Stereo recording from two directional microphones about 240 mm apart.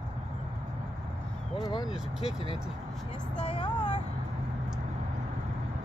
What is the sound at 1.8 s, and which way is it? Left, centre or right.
Speech, centre.